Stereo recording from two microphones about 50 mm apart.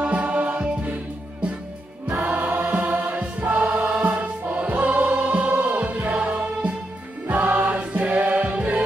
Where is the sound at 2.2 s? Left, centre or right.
Right.